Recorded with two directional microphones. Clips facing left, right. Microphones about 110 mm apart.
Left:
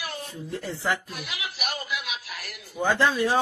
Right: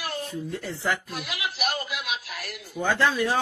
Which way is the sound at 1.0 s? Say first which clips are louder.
Right 3 dB; 70° right (ahead or behind).